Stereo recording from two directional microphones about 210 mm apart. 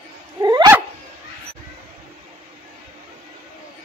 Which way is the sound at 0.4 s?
20° right (ahead or behind).